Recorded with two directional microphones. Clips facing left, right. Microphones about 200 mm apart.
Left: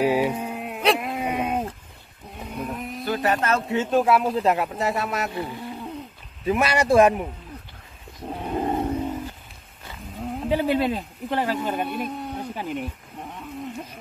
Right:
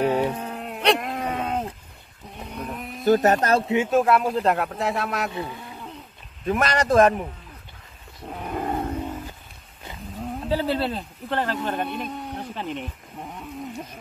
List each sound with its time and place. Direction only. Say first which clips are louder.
0.0 s livestock: left 1 dB; 10° left (ahead or behind)
2.3 s a sound: left 2 dB; 5° left (ahead or behind)
3.0 s speech: right 6 dB; 45° right (ahead or behind)
3.6 s speech: right 2 dB; 15° right (ahead or behind)
3.9 s speech: left 1 dB; centre (ahead or behind)
6.4 s a man's voice: left 1 dB; 5° left (ahead or behind)
8.4 s wild animals: left 2 dB; 20° left (ahead or behind)
10.5 s speech: left 2 dB; 15° left (ahead or behind)